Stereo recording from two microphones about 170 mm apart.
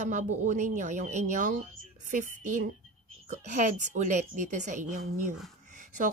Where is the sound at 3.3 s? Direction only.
45° right (ahead or behind).